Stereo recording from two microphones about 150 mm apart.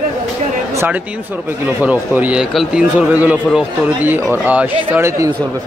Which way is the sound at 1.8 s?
10° right (ahead or behind).